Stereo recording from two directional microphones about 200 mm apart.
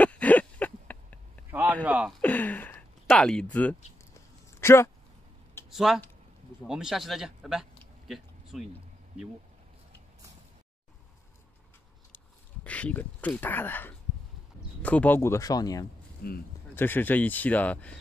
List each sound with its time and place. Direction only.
0.0 s a sound: 5° left (ahead or behind)
1.5 s a sound: 10° right (ahead or behind)
1.9 s speech: 5° right (ahead or behind)
2.2 s speech: 10° left (ahead or behind)
5.7 s speech: centre (ahead or behind)
7.8 s a sound: centre (ahead or behind)
12.6 s speech: 5° left (ahead or behind)
16.2 s speech: 50° left (ahead or behind)
16.7 s speech: 10° left (ahead or behind)